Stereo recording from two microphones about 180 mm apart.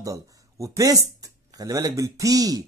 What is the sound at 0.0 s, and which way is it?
A man's voice, 20° right (ahead or behind).